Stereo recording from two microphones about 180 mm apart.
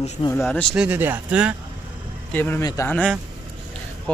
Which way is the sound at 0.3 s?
10° left (ahead or behind).